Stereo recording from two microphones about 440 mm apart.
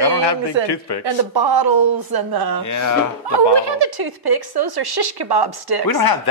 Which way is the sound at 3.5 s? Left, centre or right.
Right.